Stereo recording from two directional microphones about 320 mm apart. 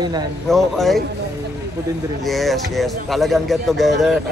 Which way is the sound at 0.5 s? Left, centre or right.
Centre.